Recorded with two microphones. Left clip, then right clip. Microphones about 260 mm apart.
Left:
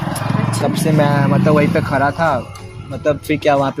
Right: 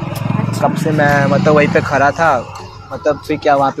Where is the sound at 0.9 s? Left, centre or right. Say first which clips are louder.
Right 4 dB; left.